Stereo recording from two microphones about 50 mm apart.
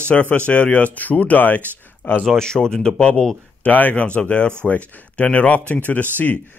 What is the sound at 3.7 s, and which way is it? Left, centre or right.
A man's voice, left.